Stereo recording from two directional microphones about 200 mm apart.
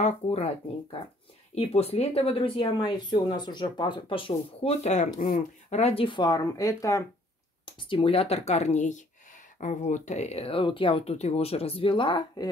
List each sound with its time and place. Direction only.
0.0 s speech: 35° left (ahead or behind)
1.5 s speech: 30° left (ahead or behind); by 7.1 s 15° left (ahead or behind)
7.6 s speech: 25° left (ahead or behind)